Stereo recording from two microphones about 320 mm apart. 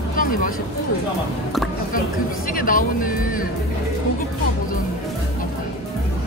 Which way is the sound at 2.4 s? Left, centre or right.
Left.